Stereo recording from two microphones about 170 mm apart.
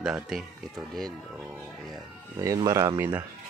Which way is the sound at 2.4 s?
20° right (ahead or behind).